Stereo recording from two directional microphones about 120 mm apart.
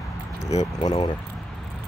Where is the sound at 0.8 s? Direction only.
35° left (ahead or behind).